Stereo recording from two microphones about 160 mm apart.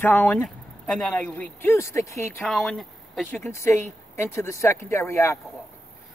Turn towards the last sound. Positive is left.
turn(degrees=15)  # may be behind; listen again after turning